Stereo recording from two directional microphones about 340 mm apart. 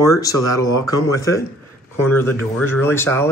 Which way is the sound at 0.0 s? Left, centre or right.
Centre.